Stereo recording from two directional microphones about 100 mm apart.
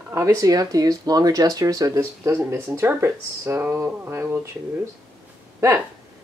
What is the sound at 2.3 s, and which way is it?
Speech, 25° right (ahead or behind).